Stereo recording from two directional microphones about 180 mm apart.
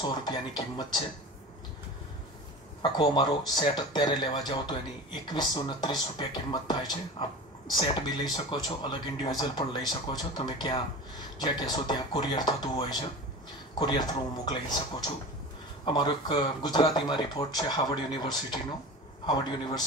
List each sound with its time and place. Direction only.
0.0 s speech: 25° left (ahead or behind)
2.8 s speech: 25° left (ahead or behind)